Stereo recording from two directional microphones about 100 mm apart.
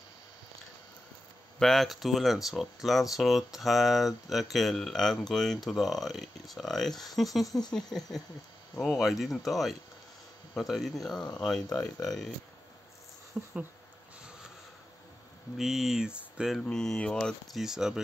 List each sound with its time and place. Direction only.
1.6 s speech: 5° left (ahead or behind)
7.4 s speech: 40° left (ahead or behind)
7.7 s speech: 5° left (ahead or behind)
13.4 s speech: 10° right (ahead or behind)
15.5 s speech: centre (ahead or behind)
16.5 s speech: 5° left (ahead or behind)